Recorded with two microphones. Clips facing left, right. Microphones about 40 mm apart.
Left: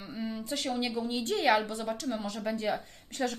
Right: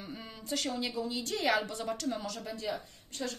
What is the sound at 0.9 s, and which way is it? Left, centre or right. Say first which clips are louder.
Speech: left 3 dB; left.